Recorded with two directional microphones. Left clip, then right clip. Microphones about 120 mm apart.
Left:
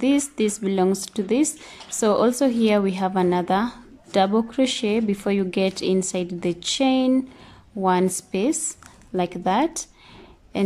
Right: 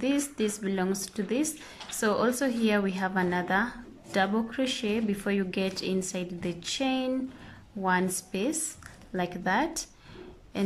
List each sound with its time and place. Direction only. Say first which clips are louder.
0.0 s a woman's voice: left 7 dB; 30° left (ahead or behind)